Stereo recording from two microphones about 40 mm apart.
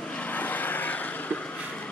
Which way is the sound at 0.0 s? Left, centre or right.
Left.